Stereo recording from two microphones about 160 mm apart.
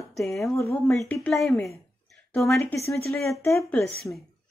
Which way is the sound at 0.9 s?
5° left (ahead or behind).